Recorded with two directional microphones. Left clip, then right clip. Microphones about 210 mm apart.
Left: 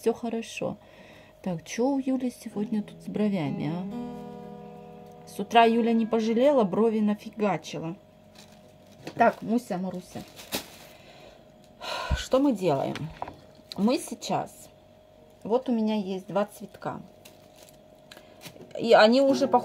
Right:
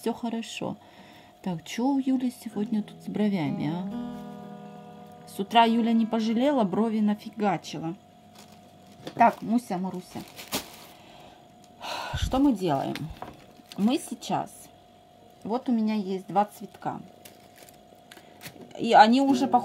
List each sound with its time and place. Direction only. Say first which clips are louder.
0.0 s speech: left 3 dB; 10° left (ahead or behind)
5.2 s speech: left 1 dB; 15° left (ahead or behind)
9.2 s a woman's voice: right 1 dB; 25° left (ahead or behind)
11.8 s a sound: left 1 dB; 30° left (ahead or behind)
13.8 s a woman's voice: left 1 dB; 20° left (ahead or behind)
15.5 s a woman's voice: left 2 dB; 20° left (ahead or behind)
18.8 s a woman's voice: even; 20° left (ahead or behind)